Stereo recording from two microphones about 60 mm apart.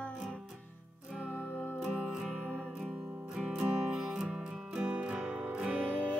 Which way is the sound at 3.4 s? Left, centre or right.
Centre.